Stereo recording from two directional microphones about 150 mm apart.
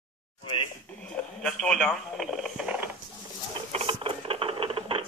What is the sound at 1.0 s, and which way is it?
Speech, 5° left (ahead or behind).